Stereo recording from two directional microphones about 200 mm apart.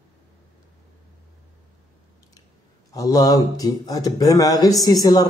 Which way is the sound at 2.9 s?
20° left (ahead or behind).